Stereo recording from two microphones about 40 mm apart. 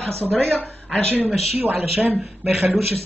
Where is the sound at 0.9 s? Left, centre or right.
Centre.